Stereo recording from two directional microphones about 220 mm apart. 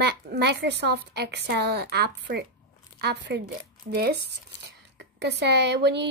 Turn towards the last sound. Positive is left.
turn(degrees=-50)  # may be behind; listen again after turning